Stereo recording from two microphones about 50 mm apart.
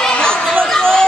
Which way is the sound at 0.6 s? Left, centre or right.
Centre.